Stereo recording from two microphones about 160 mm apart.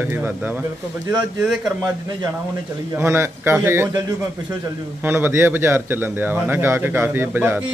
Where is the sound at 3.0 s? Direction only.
15° right (ahead or behind).